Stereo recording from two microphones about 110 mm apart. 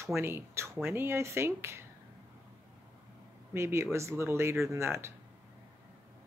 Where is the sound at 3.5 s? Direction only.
25° right (ahead or behind).